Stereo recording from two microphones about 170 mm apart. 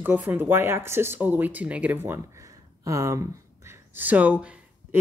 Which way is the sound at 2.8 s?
20° right (ahead or behind).